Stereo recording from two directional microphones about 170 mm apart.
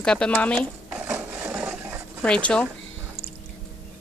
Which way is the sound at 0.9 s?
5° right (ahead or behind).